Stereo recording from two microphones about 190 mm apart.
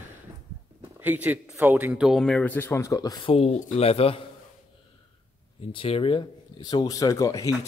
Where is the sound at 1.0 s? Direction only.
10° right (ahead or behind); by 4.2 s 30° left (ahead or behind).